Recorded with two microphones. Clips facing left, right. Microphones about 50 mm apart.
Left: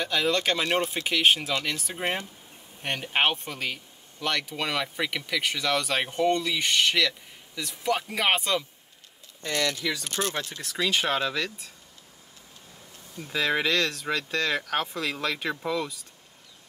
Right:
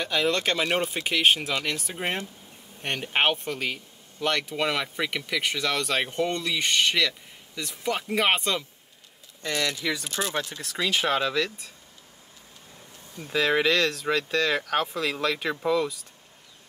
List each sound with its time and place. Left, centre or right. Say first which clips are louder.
0.0 s speech: even; centre
9.8 s speech: right 1 dB; right; by 11.7 s centre
13.3 s speech: right 3 dB; centre